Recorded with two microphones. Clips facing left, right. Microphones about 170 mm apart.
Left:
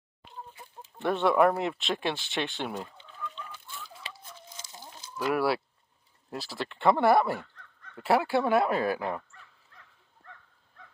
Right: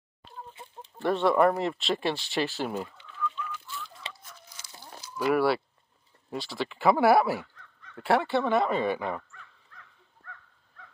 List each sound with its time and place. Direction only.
0.6 s chicken: 25° right (ahead or behind)
1.0 s speech: centre (ahead or behind)
3.0 s chicken: 30° left (ahead or behind)
4.1 s biting: 30° left (ahead or behind)
5.1 s speech: centre (ahead or behind)